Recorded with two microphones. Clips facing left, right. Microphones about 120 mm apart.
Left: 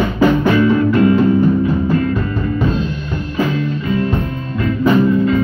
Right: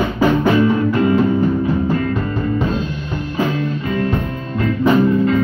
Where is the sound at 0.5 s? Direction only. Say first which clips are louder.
Left 2 dB; 25° right (ahead or behind).